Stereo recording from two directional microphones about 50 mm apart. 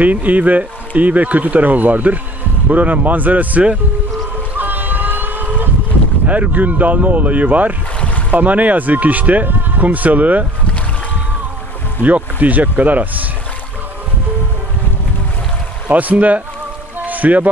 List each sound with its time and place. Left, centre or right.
0.0 s speech: right
4.6 s boat: right
6.2 s speech: right
12.0 s speech: right
15.9 s speech: right
17.0 s music: right